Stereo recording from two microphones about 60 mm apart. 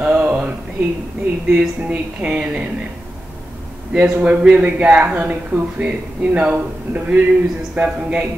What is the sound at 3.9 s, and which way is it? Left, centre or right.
A woman's voice, right.